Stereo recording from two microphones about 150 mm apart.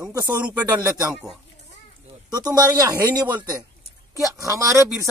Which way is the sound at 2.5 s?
25° right (ahead or behind).